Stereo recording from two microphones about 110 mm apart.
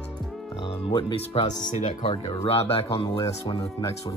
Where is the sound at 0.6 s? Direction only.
55° left (ahead or behind).